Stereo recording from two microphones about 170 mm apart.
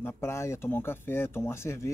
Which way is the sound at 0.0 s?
15° left (ahead or behind).